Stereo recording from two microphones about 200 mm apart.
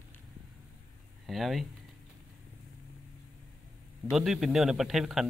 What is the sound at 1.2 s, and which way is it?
Speech, centre (ahead or behind).